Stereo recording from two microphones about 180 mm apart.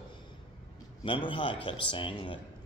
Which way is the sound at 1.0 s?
30° left (ahead or behind).